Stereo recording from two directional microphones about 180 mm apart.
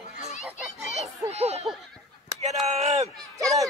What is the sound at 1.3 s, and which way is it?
Speech, 35° right (ahead or behind).